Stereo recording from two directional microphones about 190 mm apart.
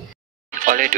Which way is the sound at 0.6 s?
45° right (ahead or behind).